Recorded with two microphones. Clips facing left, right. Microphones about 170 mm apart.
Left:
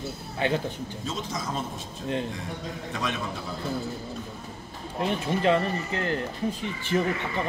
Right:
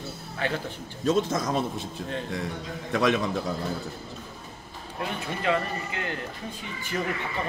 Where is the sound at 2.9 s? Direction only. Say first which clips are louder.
Right 9 dB; 70° right (ahead or behind).